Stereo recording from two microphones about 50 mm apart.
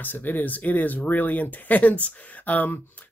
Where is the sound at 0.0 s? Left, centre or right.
Left.